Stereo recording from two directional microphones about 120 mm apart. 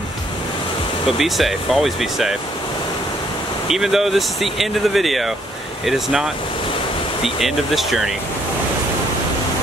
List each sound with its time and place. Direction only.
1.1 s speech: centre (ahead or behind)
3.6 s speech: 5° right (ahead or behind)